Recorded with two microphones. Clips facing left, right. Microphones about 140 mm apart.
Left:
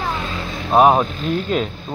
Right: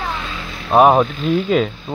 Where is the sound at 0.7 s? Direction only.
Centre (ahead or behind).